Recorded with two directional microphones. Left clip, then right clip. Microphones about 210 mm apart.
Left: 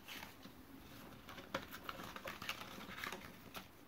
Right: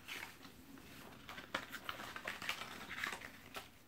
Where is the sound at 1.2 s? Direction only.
50° left (ahead or behind).